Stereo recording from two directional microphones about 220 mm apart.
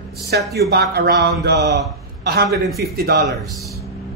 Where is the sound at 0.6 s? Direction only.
45° right (ahead or behind).